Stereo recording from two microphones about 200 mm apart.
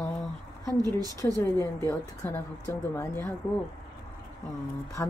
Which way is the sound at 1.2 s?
15° left (ahead or behind).